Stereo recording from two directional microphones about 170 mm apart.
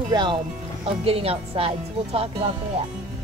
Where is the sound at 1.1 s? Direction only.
35° right (ahead or behind).